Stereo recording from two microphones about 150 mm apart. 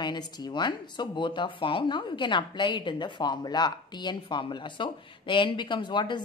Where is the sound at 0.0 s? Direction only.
30° left (ahead or behind).